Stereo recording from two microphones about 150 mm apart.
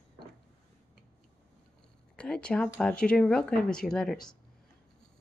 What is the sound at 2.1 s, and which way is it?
Speech, 5° left (ahead or behind).